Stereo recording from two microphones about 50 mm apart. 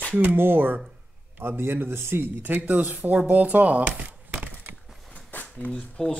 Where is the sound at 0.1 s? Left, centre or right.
Right.